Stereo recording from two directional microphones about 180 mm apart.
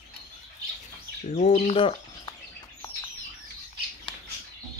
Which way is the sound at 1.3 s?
40° left (ahead or behind).